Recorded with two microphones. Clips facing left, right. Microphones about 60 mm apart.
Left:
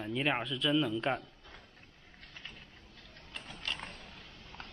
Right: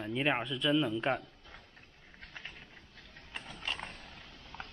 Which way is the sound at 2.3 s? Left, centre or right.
Right.